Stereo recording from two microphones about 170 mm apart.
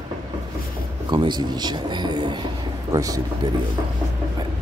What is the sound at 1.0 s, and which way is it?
Speech, 25° right (ahead or behind).